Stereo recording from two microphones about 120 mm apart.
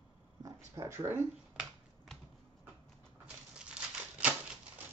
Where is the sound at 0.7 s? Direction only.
20° right (ahead or behind).